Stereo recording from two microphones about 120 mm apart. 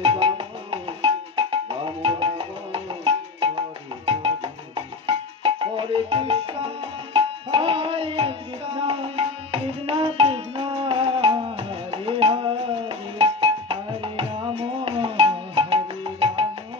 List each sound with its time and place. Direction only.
0.0 s music: 45° right (ahead or behind)